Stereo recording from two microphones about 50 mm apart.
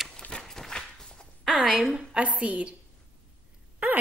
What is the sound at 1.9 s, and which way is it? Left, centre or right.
Speech, right.